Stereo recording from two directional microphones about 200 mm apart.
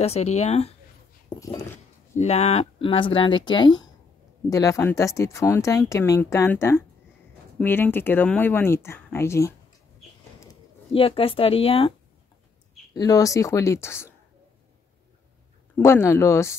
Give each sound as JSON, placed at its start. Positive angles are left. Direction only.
{"t": 0.0, "sound": "speech", "side_deg": 30}
{"t": 2.1, "sound": "speech", "side_deg": 35}
{"t": 10.9, "sound": "speech", "side_deg": 25}
{"t": 12.9, "sound": "speech", "side_deg": 20}
{"t": 15.8, "sound": "speech", "side_deg": 15}